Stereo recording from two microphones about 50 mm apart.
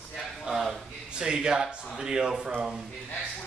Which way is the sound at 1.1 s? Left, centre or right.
Centre.